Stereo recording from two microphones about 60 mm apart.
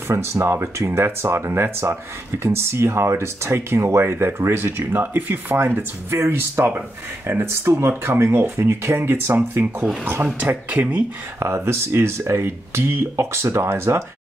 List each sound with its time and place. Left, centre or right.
0.1 s speech: right
11.3 s speech: right